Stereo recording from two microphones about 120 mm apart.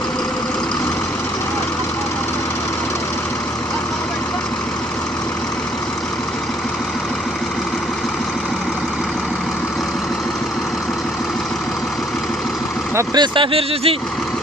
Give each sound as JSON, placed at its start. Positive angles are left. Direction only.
{"t": 13.1, "sound": "speech", "side_deg": -40}